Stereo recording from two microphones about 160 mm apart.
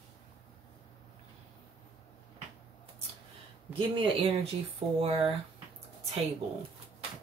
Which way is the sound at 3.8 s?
30° right (ahead or behind).